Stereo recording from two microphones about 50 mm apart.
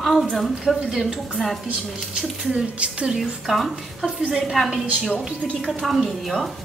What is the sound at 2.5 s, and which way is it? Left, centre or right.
Speech, right.